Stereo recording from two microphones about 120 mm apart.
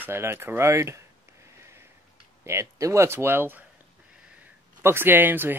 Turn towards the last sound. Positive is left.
turn(degrees=-15)  # may be behind; listen again after turning